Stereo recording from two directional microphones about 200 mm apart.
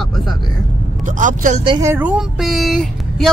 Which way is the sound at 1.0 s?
40° right (ahead or behind).